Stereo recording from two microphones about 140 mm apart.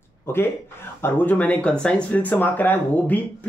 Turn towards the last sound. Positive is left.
turn(degrees=10)  # may be behind; listen again after turning